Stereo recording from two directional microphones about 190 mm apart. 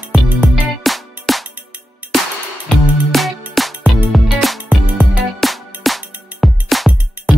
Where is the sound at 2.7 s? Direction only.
Centre (ahead or behind).